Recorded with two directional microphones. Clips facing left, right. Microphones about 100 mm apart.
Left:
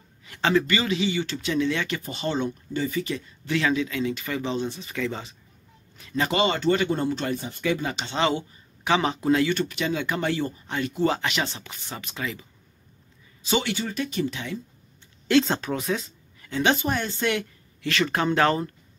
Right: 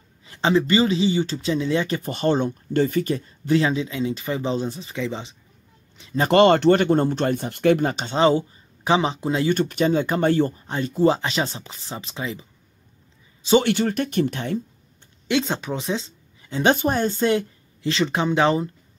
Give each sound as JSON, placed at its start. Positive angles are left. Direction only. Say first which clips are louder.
{"t": 0.2, "sound": "speech", "louder": "right 2 dB", "side_deg": -25}
{"t": 2.0, "sound": "speech", "louder": "right 6 dB", "side_deg": -50}
{"t": 4.9, "sound": "speech", "louder": "right 1 dB", "side_deg": -20}
{"t": 5.9, "sound": "a sound", "louder": "right 3 dB", "side_deg": -25}
{"t": 6.2, "sound": "speech", "louder": "right 8 dB", "side_deg": -55}
{"t": 9.5, "sound": "speech", "louder": "right 6 dB", "side_deg": -45}
{"t": 10.7, "sound": "speech", "louder": "right 3 dB", "side_deg": -30}
{"t": 13.6, "sound": "speech", "louder": "right 7 dB", "side_deg": -55}
{"t": 15.2, "sound": "speech", "louder": "left 2 dB", "side_deg": -15}
{"t": 15.8, "sound": "speech", "louder": "right 1 dB", "side_deg": -25}
{"t": 16.7, "sound": "speech", "louder": "right 5 dB", "side_deg": -35}